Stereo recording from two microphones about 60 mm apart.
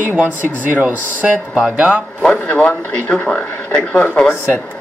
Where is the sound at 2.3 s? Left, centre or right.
Left.